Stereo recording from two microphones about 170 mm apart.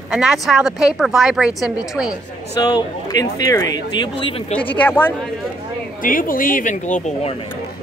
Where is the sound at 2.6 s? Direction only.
20° left (ahead or behind).